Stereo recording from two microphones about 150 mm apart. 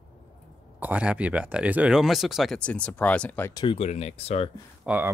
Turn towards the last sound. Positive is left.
turn(degrees=-10)  # may be behind; listen again after turning